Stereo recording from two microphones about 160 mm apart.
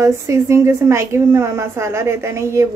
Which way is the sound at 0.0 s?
20° right (ahead or behind).